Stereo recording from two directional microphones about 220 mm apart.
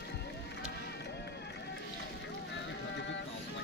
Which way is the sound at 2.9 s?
55° left (ahead or behind).